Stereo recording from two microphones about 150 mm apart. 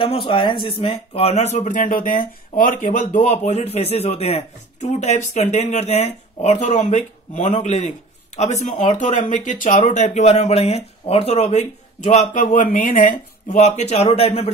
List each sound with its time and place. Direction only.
0.0 s speech: 35° left (ahead or behind)